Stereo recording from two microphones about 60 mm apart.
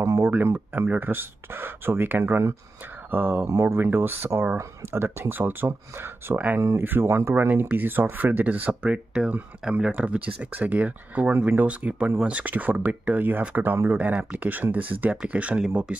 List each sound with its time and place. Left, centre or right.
0.2 s speech: right
7.7 s speech: right